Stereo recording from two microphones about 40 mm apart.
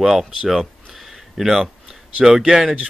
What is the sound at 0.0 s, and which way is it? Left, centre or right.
Speech, centre.